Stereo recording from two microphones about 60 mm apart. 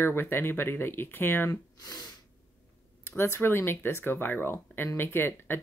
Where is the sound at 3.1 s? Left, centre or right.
Left.